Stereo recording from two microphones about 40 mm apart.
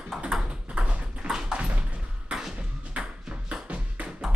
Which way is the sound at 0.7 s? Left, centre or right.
Right.